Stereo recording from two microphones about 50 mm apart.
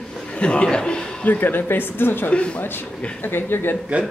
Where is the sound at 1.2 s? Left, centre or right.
Left.